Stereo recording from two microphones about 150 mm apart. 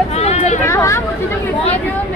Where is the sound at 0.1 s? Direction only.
45° left (ahead or behind).